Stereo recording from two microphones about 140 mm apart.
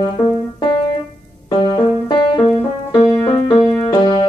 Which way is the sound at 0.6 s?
40° left (ahead or behind).